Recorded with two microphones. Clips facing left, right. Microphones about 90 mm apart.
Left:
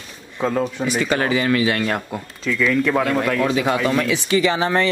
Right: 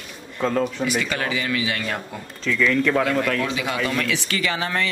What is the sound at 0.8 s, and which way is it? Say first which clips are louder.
A man's voice: left 4 dB; 35° left (ahead or behind).